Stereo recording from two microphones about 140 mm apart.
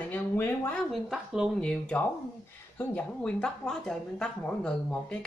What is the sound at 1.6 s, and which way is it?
Speech, 5° left (ahead or behind).